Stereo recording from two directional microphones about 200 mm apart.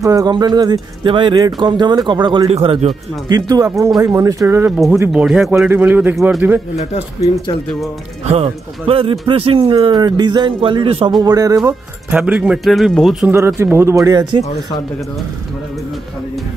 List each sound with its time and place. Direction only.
0.0 s speech: 20° right (ahead or behind)
3.3 s speech: 20° right (ahead or behind)
8.3 s speech: 30° right (ahead or behind)
12.2 s a man's voice: 5° right (ahead or behind)
13.6 s speech: 15° right (ahead or behind)